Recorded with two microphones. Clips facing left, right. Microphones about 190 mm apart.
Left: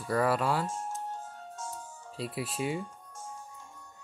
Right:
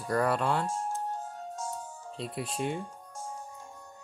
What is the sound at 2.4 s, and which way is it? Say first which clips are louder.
Speech: even; 5° left (ahead or behind).